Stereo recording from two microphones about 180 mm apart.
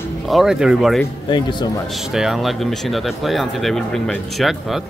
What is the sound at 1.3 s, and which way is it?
Speech, 25° left (ahead or behind).